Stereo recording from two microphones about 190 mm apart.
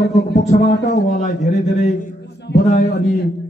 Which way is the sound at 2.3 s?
60° left (ahead or behind).